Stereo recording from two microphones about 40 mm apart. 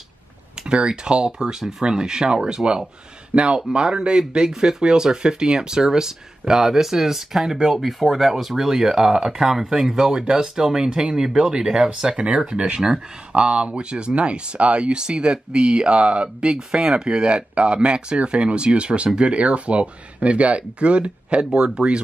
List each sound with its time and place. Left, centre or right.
0.7 s speech: right
1.6 s speech: centre
1.9 s speech: centre
12.2 s speech: right
21.5 s speech: centre